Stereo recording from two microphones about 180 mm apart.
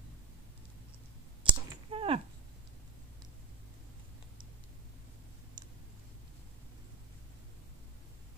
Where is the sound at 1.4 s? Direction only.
30° right (ahead or behind).